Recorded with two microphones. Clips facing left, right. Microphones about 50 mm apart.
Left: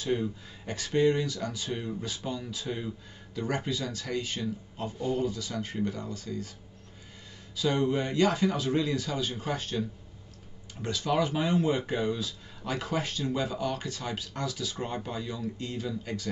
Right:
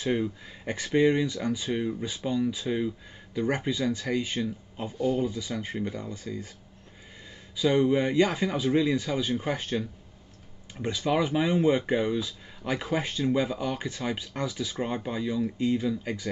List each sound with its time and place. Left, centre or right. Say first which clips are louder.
0.0 s speech: right 2 dB; right
7.5 s speech: right 4 dB; centre